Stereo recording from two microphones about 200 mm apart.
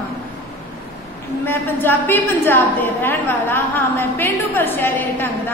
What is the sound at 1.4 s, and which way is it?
A woman's voice, 10° left (ahead or behind).